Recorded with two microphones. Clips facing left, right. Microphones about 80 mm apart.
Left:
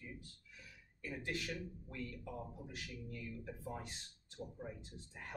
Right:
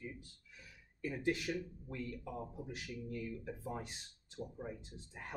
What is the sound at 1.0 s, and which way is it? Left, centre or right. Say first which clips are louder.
Speech: right 6 dB; centre.